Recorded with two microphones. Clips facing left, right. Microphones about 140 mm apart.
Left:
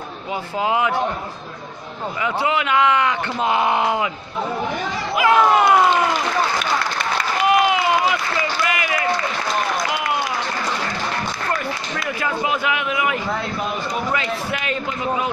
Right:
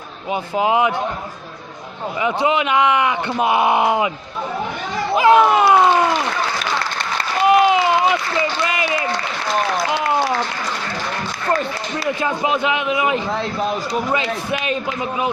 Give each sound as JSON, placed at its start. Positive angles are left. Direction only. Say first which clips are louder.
{"t": 0.3, "sound": "speech", "louder": "right 4 dB", "side_deg": -20}
{"t": 2.2, "sound": "speech", "louder": "right 3 dB", "side_deg": -20}
{"t": 5.1, "sound": "speech", "louder": "right 3 dB", "side_deg": -20}
{"t": 7.4, "sound": "a sound", "louder": "right 4 dB", "side_deg": -25}
{"t": 12.0, "sound": "speech", "louder": "right 4 dB", "side_deg": -20}
{"t": 14.6, "sound": "speech", "louder": "right 2 dB", "side_deg": -20}